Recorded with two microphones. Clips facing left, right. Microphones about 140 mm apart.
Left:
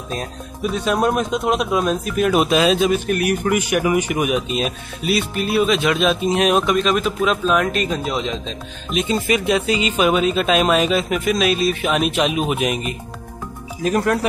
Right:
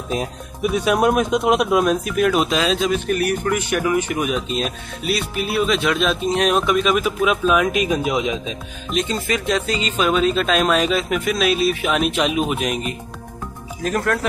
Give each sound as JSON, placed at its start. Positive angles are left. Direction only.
{"t": 0.1, "sound": "speech", "side_deg": -10}
{"t": 8.9, "sound": "speech", "side_deg": 10}
{"t": 13.9, "sound": "speech", "side_deg": 20}